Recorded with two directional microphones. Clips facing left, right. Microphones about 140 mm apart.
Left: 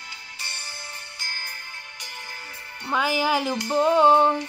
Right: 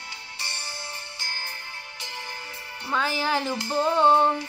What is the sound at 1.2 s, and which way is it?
Music, 20° right (ahead or behind).